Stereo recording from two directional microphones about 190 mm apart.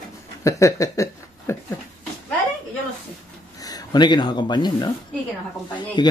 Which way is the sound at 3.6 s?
20° left (ahead or behind).